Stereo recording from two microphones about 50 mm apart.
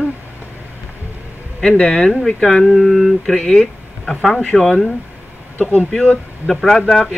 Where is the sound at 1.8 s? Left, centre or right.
Centre.